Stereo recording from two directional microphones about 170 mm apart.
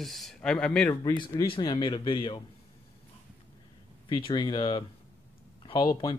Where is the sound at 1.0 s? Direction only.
25° left (ahead or behind).